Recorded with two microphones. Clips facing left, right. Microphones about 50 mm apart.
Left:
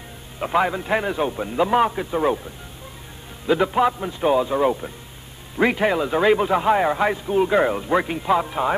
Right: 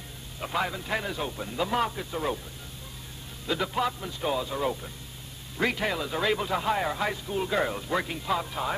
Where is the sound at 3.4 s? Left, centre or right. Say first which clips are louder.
Left 10 dB; left.